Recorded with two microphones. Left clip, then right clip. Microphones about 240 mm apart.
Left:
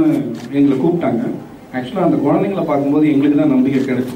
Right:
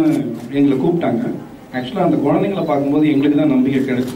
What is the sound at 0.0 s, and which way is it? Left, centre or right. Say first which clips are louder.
A man's voice: left 1 dB; centre.